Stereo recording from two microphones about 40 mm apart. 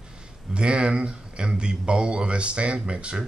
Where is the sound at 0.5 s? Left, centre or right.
Right.